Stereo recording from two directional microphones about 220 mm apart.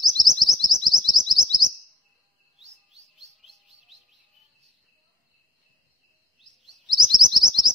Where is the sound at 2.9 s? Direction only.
Centre (ahead or behind).